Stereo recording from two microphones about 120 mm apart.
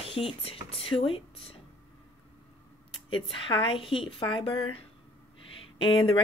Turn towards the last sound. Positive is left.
turn(degrees=45)  # may be behind; listen again after turning